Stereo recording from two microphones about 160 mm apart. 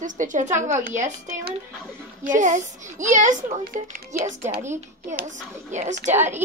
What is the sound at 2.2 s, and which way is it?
A woman's voice, 50° right (ahead or behind).